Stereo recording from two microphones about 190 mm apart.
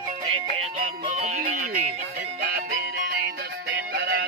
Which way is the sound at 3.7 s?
65° right (ahead or behind).